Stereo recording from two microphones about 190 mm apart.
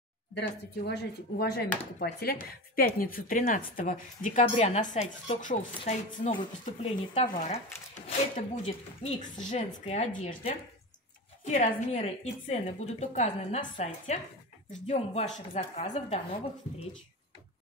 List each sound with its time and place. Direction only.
0.3 s speech: 60° left (ahead or behind); by 7.6 s 35° left (ahead or behind)
8.6 s a woman's voice: 40° left (ahead or behind)